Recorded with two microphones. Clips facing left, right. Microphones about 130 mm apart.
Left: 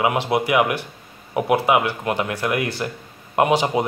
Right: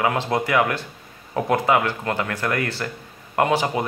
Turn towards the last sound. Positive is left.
turn(degrees=20)  # may be behind; listen again after turning